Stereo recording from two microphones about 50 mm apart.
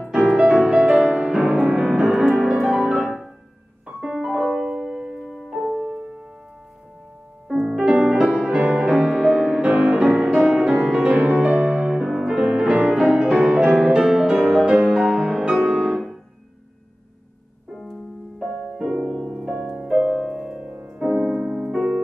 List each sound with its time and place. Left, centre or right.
0.4 s music: centre
3.8 s piano: centre
5.2 s music: centre
7.4 s music: centre
10.0 s music: centre
13.4 s music: right
14.4 s music: centre
14.7 s music: centre
18.8 s music: centre